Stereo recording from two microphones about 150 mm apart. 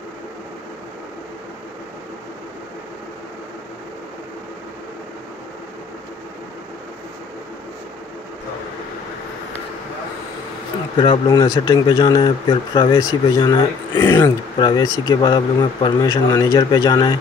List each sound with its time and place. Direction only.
11.0 s speech: 30° left (ahead or behind)
14.6 s speech: 30° left (ahead or behind)